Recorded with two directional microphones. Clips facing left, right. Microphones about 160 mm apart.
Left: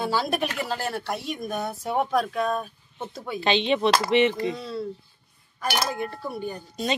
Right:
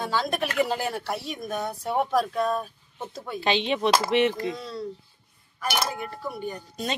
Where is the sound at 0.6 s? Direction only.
15° right (ahead or behind); by 4.9 s centre (ahead or behind).